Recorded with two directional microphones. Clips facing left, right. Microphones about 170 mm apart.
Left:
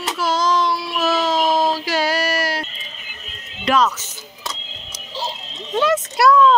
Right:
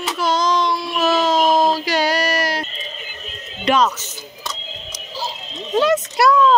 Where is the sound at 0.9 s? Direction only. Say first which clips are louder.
Right 3 dB; centre (ahead or behind).